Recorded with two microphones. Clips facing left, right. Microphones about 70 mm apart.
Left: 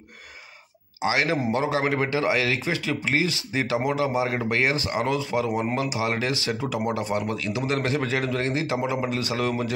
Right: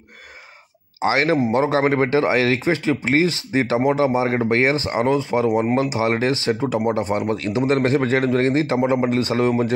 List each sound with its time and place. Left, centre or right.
1.0 s speech: right